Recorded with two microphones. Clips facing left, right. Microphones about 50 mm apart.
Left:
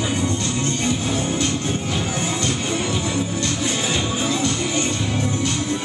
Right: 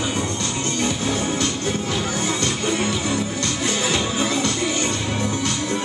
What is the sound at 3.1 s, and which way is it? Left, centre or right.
Music, centre.